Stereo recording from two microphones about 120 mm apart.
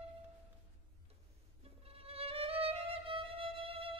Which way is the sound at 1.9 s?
55° right (ahead or behind).